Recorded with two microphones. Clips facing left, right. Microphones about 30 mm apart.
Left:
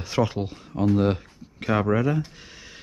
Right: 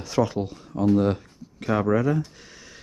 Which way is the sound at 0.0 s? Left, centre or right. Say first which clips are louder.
Right 1 dB; centre.